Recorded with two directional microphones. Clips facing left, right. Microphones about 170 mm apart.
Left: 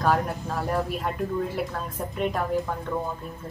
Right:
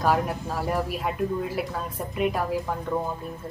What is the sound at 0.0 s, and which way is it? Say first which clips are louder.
Speech: even; 5° right (ahead or behind).